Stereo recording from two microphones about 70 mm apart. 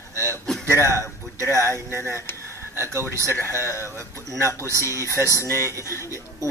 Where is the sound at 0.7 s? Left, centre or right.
Right.